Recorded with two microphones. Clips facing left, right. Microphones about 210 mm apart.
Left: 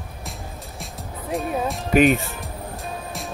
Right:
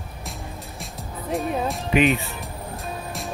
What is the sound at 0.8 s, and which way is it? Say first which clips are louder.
Music: even; centre (ahead or behind).